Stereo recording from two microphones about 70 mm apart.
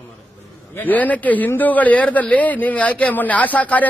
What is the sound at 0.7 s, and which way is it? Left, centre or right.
A man's voice, left.